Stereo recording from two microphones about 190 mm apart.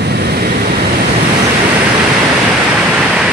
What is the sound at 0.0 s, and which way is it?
Vehicle, 60° right (ahead or behind).